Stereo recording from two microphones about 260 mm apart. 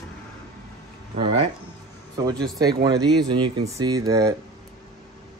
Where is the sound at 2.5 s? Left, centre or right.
Centre.